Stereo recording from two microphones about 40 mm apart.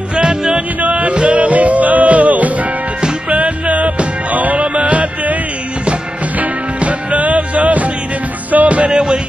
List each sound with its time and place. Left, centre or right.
0.1 s music: centre
0.7 s music: right
8.9 s music: centre